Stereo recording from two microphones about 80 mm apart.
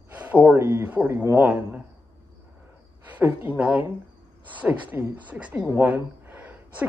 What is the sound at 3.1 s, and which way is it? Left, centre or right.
A woman's voice, right.